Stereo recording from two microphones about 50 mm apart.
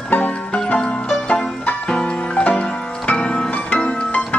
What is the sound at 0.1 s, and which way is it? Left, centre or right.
Music, left.